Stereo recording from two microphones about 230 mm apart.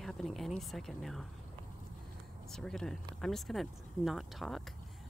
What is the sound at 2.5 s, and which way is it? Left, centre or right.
Speech, centre.